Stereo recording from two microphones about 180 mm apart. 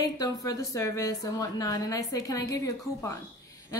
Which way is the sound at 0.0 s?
20° left (ahead or behind).